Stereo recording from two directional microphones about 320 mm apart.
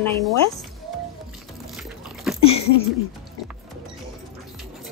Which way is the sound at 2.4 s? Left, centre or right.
Centre.